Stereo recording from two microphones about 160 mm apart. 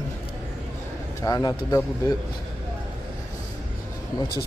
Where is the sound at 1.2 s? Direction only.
20° left (ahead or behind).